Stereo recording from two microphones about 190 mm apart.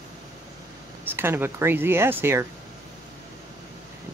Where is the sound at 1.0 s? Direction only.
10° right (ahead or behind).